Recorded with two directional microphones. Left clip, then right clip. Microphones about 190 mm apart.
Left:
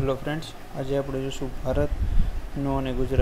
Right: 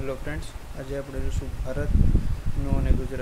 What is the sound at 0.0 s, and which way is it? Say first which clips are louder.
Speech: left 5 dB; 15° left (ahead or behind).